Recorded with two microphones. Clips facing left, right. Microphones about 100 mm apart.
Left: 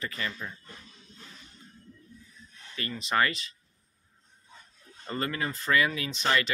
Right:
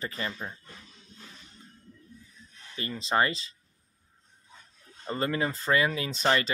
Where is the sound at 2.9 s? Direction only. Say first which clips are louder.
Right 1 dB; 30° right (ahead or behind).